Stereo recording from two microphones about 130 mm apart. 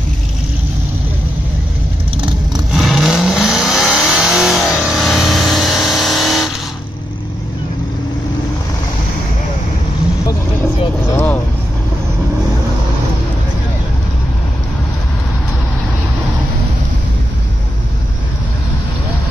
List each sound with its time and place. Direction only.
2.7 s vehicle: centre (ahead or behind)
11.1 s vehicle: 15° left (ahead or behind)